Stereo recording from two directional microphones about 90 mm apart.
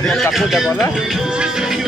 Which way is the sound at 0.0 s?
Centre (ahead or behind).